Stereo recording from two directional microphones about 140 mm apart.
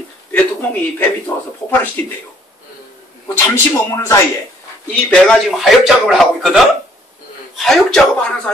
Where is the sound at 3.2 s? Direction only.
20° left (ahead or behind).